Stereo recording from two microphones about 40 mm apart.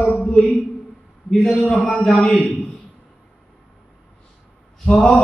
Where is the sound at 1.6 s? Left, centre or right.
Left.